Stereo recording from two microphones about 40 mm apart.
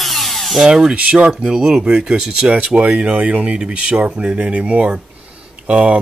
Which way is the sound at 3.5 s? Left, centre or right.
Right.